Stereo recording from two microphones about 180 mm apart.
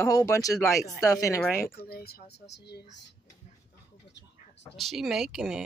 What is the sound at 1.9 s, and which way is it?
Speech, 55° left (ahead or behind).